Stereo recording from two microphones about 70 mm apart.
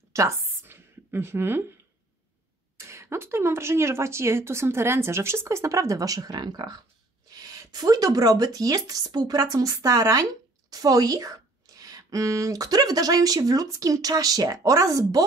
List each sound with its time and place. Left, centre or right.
0.1 s a woman's voice: right
0.7 s a sound: right
2.8 s speech: right
7.2 s a woman's voice: right